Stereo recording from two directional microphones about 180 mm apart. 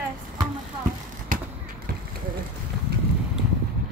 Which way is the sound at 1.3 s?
50° right (ahead or behind).